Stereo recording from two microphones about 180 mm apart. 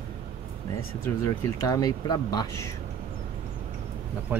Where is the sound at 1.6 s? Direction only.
20° left (ahead or behind).